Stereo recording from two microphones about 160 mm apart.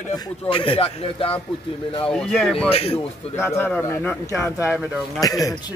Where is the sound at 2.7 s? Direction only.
40° left (ahead or behind).